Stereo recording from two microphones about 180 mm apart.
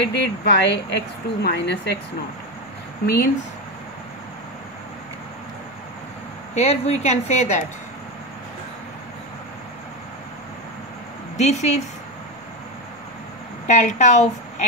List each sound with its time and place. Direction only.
0.0 s a woman's voice: 70° left (ahead or behind)
6.5 s speech: 35° left (ahead or behind)
11.3 s speech: 40° left (ahead or behind)
13.7 s a woman's voice: 40° left (ahead or behind)